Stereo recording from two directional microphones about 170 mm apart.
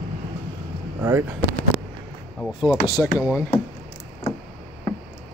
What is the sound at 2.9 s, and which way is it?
Speech, 20° left (ahead or behind).